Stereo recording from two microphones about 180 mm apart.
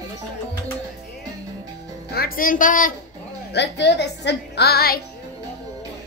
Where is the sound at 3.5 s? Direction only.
70° left (ahead or behind).